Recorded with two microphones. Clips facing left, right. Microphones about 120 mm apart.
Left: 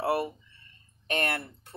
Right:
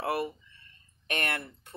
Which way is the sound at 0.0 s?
35° left (ahead or behind).